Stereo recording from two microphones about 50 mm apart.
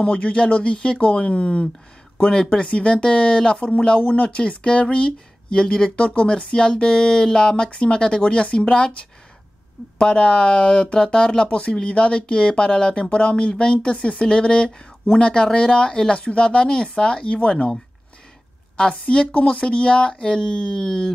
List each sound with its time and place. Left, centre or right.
0.0 s speech: left
18.8 s speech: left